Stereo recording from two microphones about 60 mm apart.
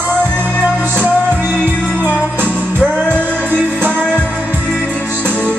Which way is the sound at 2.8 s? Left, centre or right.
Centre.